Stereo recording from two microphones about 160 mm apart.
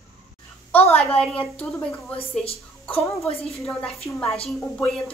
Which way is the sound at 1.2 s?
10° left (ahead or behind).